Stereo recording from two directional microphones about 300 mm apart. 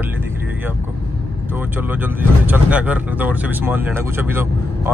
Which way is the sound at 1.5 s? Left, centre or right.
Centre.